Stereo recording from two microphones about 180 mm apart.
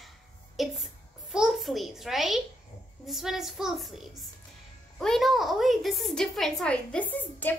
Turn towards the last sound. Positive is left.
turn(degrees=10)  # may be behind; listen again after turning